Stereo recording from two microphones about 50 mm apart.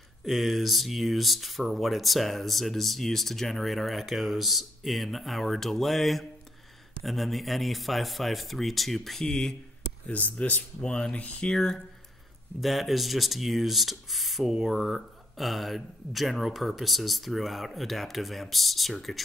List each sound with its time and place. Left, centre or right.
0.2 s speech: centre
10.4 s speech: left; by 11.8 s centre
12.5 s speech: centre